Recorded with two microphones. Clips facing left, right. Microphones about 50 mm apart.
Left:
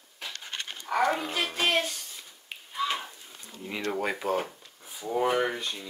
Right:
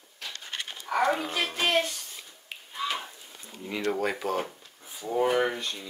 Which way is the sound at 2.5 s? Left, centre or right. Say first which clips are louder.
Left 2 dB; centre.